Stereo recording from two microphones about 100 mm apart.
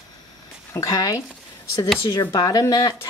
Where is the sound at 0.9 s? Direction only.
40° left (ahead or behind).